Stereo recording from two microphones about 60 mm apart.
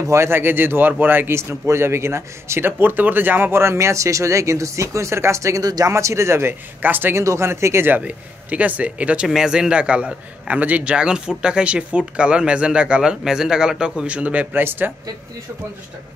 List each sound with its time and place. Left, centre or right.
0.0 s speech: right
1.3 s speech: right
2.8 s speech: right
3.6 s speech: right
5.9 s speech: right
6.8 s speech: right
7.2 s speech: right
7.9 s a man's voice: right
14.5 s speech: right